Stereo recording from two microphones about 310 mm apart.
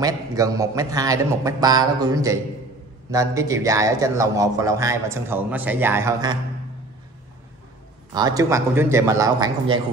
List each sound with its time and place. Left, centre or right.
0.0 s speech: centre
8.1 s speech: centre